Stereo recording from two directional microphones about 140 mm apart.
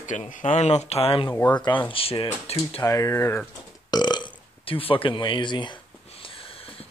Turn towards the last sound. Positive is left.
turn(degrees=35)  # may be behind; listen again after turning